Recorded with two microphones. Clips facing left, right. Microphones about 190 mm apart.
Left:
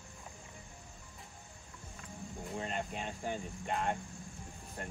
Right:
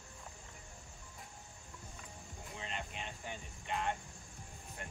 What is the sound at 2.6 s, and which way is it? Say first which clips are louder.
Speech: left 6 dB; 45° left (ahead or behind).